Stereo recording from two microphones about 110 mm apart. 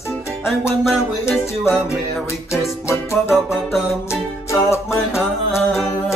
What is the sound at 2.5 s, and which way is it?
Music, 25° left (ahead or behind).